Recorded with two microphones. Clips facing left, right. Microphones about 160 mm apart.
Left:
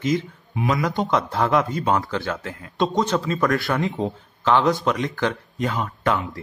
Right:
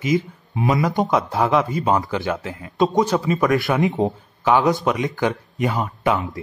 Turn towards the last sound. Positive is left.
turn(degrees=-10)  # may be behind; listen again after turning